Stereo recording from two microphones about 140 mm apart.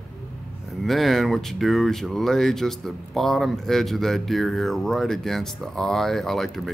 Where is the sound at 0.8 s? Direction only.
Centre (ahead or behind).